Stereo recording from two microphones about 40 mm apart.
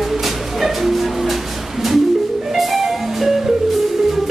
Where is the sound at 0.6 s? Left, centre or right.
Centre.